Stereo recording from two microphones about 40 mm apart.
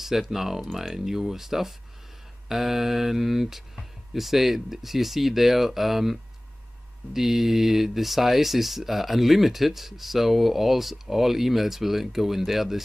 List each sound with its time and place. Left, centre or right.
0.0 s speech: centre
7.2 s speech: centre